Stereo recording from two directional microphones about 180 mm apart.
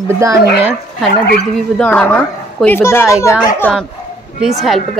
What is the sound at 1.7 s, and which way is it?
A man's voice, 10° left (ahead or behind).